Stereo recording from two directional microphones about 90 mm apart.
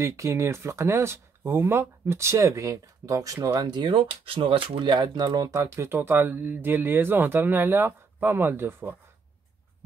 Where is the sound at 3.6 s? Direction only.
55° right (ahead or behind).